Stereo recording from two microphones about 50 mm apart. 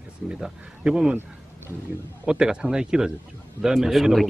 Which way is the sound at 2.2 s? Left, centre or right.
Centre.